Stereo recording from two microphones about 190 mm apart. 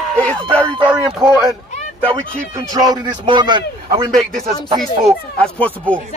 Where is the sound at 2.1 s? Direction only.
20° right (ahead or behind).